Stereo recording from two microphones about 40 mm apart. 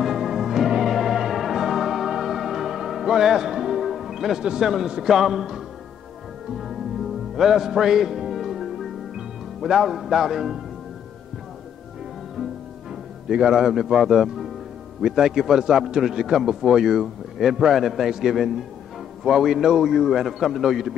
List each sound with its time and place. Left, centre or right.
0.0 s organ: centre
0.8 s music: centre
4.4 s a man's voice: centre
6.5 s music: centre
13.3 s a man's voice: centre
17.7 s music: centre
19.2 s a man's voice: centre